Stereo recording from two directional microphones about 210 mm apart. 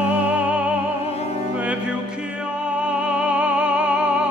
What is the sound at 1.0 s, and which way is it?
Music, 30° left (ahead or behind).